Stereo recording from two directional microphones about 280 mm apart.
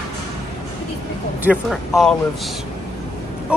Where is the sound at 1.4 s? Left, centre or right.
Centre.